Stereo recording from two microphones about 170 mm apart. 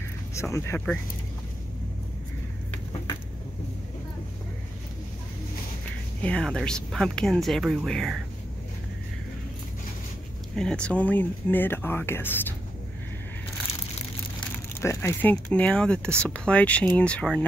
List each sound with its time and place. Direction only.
0.3 s speech: 15° left (ahead or behind)
6.2 s speech: 5° left (ahead or behind)
10.5 s speech: 5° left (ahead or behind)
14.4 s speech: 15° left (ahead or behind)